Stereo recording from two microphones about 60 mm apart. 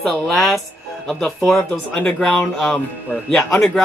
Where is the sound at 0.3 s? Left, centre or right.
Centre.